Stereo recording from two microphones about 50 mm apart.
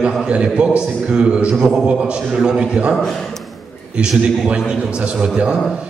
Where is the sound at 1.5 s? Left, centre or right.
Centre.